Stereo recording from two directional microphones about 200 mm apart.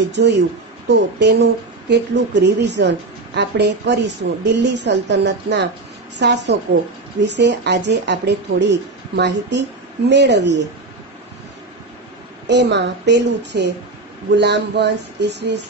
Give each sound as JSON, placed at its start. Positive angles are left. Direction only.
{"t": 0.1, "sound": "speech", "side_deg": -60}
{"t": 12.4, "sound": "speech", "side_deg": -60}